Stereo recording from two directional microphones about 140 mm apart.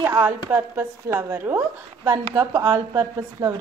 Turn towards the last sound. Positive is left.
turn(degrees=-20)  # may be behind; listen again after turning